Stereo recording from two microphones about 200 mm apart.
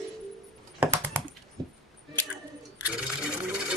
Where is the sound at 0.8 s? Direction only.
5° right (ahead or behind).